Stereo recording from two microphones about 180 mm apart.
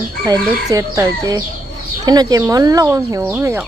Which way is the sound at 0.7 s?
20° right (ahead or behind).